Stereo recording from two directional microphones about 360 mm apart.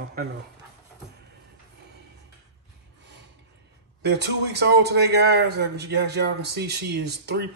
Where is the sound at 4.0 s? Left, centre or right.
Right.